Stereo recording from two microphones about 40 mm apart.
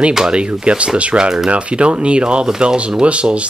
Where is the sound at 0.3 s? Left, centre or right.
Right.